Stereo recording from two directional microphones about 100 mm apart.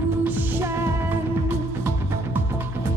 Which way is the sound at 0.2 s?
20° right (ahead or behind).